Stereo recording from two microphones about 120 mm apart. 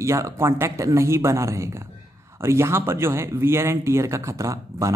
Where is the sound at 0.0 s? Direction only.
25° right (ahead or behind).